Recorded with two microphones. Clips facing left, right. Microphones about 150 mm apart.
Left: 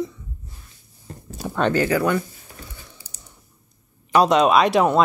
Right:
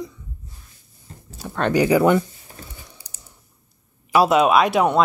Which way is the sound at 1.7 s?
20° right (ahead or behind).